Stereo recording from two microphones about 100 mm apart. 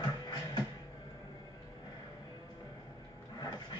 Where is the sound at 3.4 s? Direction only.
50° left (ahead or behind).